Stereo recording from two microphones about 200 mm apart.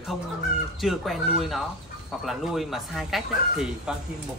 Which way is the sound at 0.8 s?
Centre (ahead or behind).